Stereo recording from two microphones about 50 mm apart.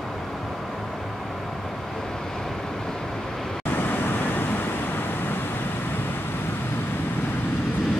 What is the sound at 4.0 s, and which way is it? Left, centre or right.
Vehicle, left.